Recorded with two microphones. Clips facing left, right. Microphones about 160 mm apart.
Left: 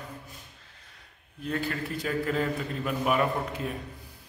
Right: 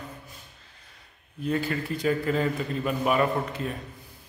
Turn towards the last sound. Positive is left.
turn(degrees=5)  # may be behind; listen again after turning